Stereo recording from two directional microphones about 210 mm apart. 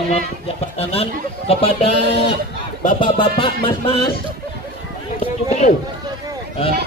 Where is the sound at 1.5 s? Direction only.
25° left (ahead or behind).